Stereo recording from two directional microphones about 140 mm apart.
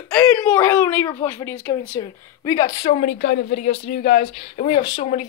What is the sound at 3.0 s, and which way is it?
Speech, 90° left.